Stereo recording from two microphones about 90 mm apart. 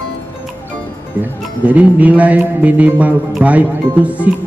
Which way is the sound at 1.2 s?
15° right (ahead or behind).